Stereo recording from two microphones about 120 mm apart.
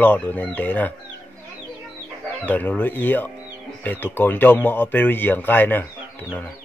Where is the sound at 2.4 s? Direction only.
15° left (ahead or behind).